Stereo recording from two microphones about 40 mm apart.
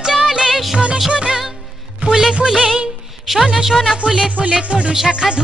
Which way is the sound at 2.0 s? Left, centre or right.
Right.